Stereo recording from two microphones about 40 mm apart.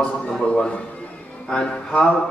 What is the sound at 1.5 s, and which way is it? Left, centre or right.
Speech, left.